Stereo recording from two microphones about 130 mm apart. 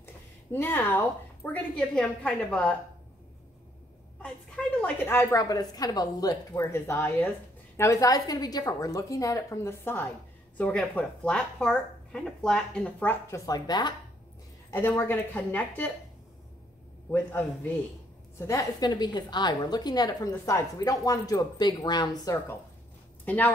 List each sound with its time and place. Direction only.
0.0 s a woman's voice: 15° left (ahead or behind)
4.2 s a woman's voice: 10° left (ahead or behind)
13.5 s a woman's voice: 30° left (ahead or behind)
14.7 s speech: 15° left (ahead or behind)
17.1 s speech: 15° left (ahead or behind)
18.5 s a woman's voice: 30° left (ahead or behind)
23.2 s speech: 10° left (ahead or behind)